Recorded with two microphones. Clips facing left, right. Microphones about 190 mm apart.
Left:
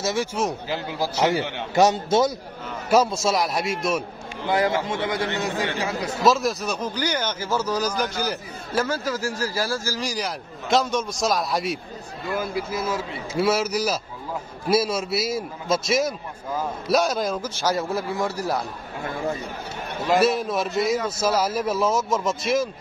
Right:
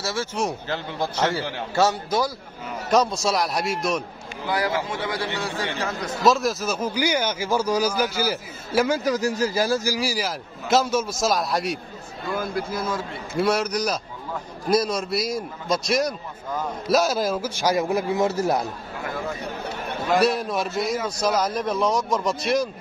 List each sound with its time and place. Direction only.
0.0 s a man's voice: 15° left (ahead or behind)
0.4 s a man's voice: 5° left (ahead or behind)
1.8 s a man's voice: 20° left (ahead or behind)
2.9 s a man's voice: 5° left (ahead or behind)
4.5 s a man's voice: 25° left (ahead or behind); by 18.6 s 20° right (ahead or behind)
20.2 s a man's voice: centre (ahead or behind)